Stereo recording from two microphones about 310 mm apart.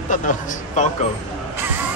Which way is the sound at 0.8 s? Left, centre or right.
Left.